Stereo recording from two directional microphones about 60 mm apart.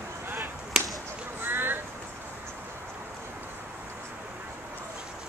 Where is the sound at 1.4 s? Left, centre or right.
Right.